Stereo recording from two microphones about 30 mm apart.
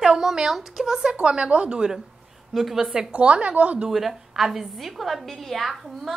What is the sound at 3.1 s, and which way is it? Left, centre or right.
Speech, right.